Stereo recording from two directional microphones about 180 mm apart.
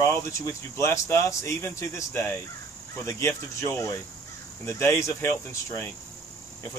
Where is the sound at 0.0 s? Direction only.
15° left (ahead or behind).